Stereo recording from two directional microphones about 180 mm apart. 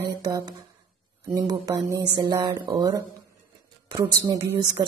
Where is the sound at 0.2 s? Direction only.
20° right (ahead or behind).